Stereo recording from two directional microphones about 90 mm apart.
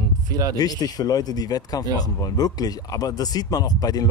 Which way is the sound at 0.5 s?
45° left (ahead or behind).